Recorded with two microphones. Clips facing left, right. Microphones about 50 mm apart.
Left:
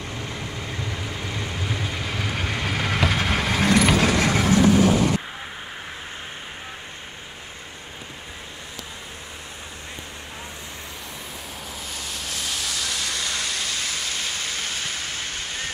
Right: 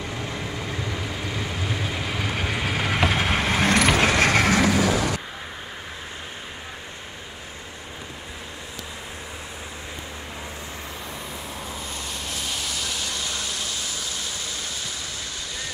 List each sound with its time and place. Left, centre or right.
0.9 s vehicle: centre
4.2 s vehicle: right
12.2 s a sound: left